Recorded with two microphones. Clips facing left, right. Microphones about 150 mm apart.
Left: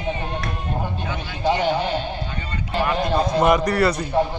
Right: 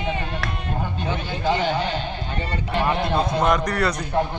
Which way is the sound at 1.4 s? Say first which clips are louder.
Left 3 dB; 15° left (ahead or behind).